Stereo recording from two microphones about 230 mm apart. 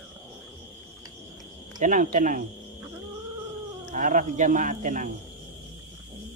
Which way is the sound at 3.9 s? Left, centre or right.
Right.